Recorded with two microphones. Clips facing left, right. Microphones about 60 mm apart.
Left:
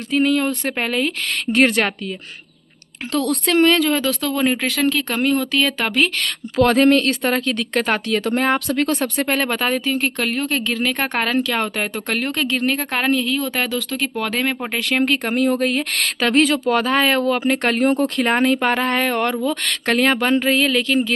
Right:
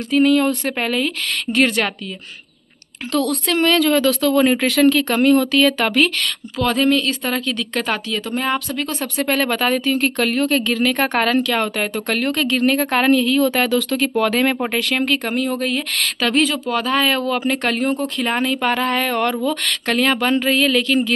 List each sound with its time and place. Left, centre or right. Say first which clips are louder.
0.1 s speech: right 3 dB; centre
3.1 s a woman's voice: even; left
6.5 s speech: left 4 dB; left
9.2 s a woman's voice: right 5 dB; centre
15.0 s speech: left 2 dB; left